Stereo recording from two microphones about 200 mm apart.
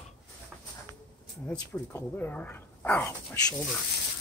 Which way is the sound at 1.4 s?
10° left (ahead or behind).